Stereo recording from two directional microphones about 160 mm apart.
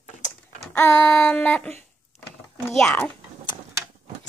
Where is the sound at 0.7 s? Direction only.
5° left (ahead or behind).